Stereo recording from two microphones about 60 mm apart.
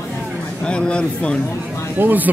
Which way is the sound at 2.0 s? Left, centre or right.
Right.